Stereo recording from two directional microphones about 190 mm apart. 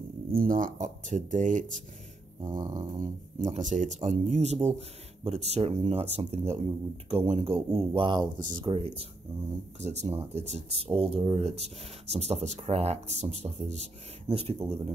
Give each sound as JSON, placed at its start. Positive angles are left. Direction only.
{"t": 0.3, "sound": "speech", "side_deg": -45}
{"t": 2.4, "sound": "speech", "side_deg": -20}
{"t": 3.4, "sound": "speech", "side_deg": -40}